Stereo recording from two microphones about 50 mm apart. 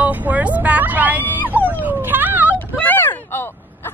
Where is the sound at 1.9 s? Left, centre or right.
Right.